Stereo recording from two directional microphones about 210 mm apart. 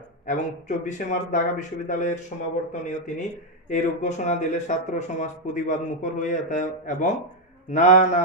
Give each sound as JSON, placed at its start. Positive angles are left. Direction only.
{"t": 0.3, "sound": "speech", "side_deg": 35}